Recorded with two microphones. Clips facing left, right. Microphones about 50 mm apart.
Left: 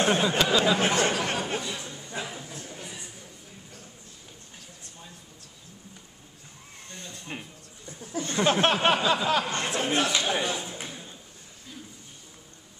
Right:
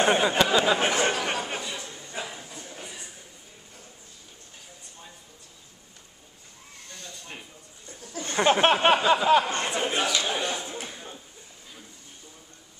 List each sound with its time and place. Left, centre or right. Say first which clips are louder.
0.0 s speech: right 2 dB; centre
0.7 s chatter: even; centre
1.5 s a sound: left 1 dB; centre
6.9 s a sound: left 3 dB; left
8.2 s speech: right 2 dB; centre
9.7 s speech: left 1 dB; centre
10.2 s a man's voice: left 1 dB; centre